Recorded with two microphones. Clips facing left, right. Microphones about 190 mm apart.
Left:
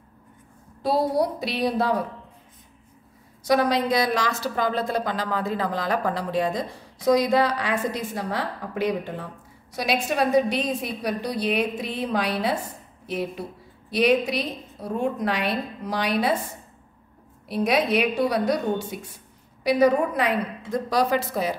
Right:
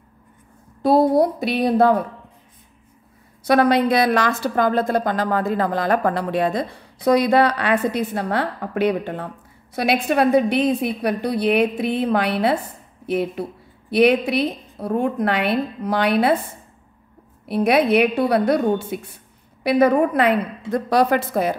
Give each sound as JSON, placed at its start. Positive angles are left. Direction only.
{"t": 0.8, "sound": "a woman's voice", "side_deg": -50}
{"t": 3.4, "sound": "a woman's voice", "side_deg": -60}
{"t": 17.5, "sound": "a woman's voice", "side_deg": -60}